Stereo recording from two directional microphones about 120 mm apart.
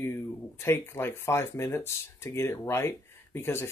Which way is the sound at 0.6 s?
20° left (ahead or behind).